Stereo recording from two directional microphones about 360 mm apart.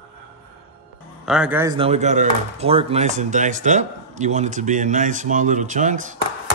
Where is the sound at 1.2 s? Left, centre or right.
Centre; by 6.2 s right.